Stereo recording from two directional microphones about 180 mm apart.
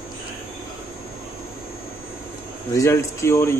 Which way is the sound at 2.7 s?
15° left (ahead or behind).